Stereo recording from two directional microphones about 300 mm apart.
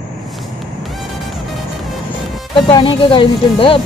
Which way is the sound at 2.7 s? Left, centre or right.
Centre.